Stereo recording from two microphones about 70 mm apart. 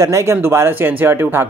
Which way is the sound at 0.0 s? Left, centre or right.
Right.